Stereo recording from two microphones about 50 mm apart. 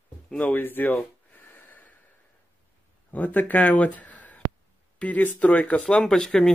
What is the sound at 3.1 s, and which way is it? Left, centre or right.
Speech, left.